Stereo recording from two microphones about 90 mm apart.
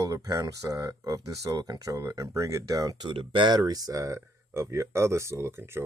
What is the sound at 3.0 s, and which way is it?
Speech, 70° right (ahead or behind).